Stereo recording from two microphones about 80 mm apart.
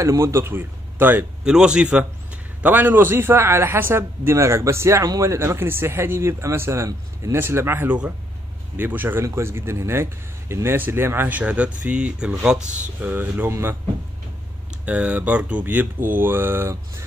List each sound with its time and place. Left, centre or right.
0.0 s a man's voice: right
1.4 s speech: centre
2.6 s a man's voice: right
13.0 s a man's voice: right
14.9 s a man's voice: centre